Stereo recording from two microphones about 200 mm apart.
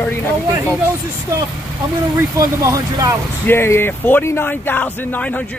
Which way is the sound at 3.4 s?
10° left (ahead or behind).